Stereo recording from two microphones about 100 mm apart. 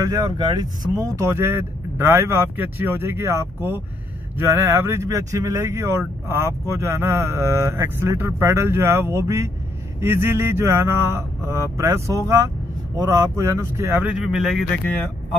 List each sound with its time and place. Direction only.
0.0 s speech: 35° right (ahead or behind)
14.0 s speech: 10° right (ahead or behind)